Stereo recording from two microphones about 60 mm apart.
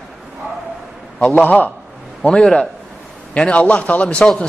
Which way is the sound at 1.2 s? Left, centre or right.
Left.